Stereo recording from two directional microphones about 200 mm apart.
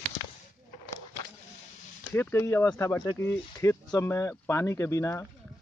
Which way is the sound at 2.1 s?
15° left (ahead or behind).